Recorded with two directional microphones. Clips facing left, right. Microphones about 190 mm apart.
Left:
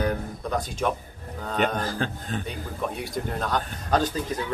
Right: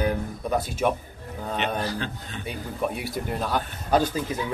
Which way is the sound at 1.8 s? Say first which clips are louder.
Left 1 dB; 45° left (ahead or behind).